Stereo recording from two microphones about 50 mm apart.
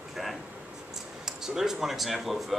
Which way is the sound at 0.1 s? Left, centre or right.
Centre.